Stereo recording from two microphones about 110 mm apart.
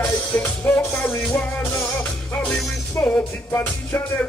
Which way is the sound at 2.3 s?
20° left (ahead or behind).